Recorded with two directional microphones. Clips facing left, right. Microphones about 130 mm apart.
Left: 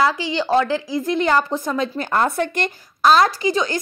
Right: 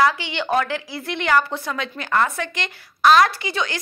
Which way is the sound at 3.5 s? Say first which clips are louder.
Left 6 dB; 40° left (ahead or behind).